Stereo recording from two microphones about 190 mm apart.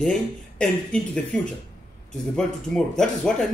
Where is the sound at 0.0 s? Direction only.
5° left (ahead or behind).